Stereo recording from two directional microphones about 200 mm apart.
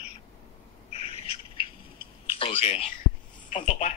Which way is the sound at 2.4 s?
30° left (ahead or behind).